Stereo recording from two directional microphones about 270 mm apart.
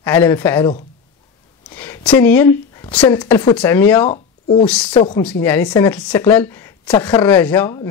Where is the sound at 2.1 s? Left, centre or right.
Centre.